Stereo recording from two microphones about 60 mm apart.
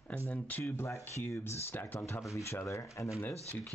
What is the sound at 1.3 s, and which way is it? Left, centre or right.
Speech, left.